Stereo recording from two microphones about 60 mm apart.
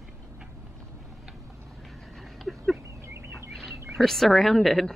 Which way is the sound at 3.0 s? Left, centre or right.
Right.